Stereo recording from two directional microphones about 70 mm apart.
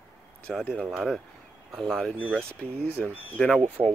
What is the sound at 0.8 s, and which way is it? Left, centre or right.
Speech, centre.